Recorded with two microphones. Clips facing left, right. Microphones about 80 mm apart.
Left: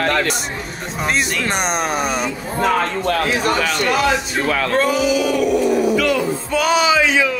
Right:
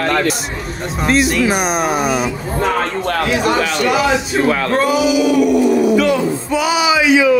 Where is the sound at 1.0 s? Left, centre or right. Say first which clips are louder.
Right 6 dB; centre.